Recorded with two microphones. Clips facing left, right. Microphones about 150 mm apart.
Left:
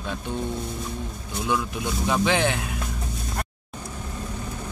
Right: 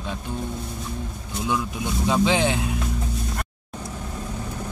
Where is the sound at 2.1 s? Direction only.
10° right (ahead or behind).